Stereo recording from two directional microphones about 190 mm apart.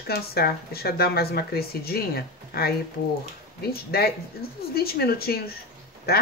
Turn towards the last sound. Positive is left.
turn(degrees=55)  # may be behind; listen again after turning